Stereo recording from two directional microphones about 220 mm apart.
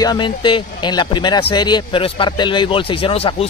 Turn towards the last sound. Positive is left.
turn(degrees=25)  # may be behind; listen again after turning